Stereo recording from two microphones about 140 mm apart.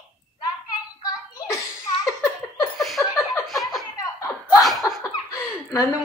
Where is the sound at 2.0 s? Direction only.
20° left (ahead or behind).